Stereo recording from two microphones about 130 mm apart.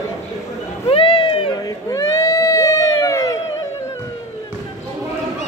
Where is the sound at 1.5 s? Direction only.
25° left (ahead or behind).